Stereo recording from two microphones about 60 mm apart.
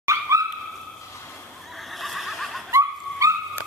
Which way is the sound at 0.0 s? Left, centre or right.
Right.